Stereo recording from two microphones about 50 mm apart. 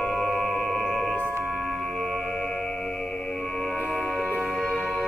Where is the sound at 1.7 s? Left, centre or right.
Centre.